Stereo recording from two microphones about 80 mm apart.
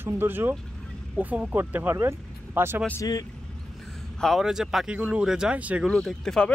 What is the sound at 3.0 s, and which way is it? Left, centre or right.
Speech, left.